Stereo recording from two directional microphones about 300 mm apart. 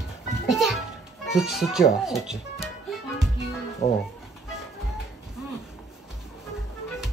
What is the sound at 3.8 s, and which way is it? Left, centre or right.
Speech, left.